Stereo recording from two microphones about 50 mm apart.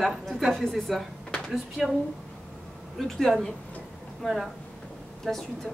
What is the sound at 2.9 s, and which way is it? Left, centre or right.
A woman's voice, centre.